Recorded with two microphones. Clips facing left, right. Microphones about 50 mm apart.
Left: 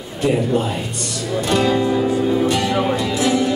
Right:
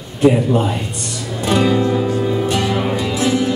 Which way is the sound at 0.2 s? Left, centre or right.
Centre.